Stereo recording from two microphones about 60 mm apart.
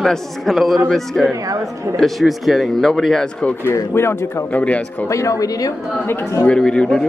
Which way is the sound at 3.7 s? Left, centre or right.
Left.